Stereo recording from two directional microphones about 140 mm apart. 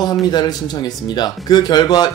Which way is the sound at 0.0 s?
30° left (ahead or behind).